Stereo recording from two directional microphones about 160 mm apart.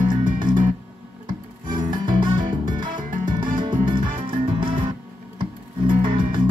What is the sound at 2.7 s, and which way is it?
Music, 30° right (ahead or behind).